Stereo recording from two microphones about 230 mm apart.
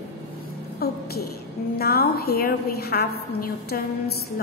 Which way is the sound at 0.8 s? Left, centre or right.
Left.